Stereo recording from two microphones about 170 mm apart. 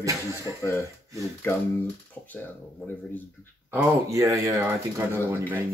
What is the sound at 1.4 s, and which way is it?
Speech, 10° left (ahead or behind).